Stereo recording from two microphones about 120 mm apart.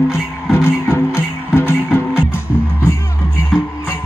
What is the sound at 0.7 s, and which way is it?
Music, 25° left (ahead or behind).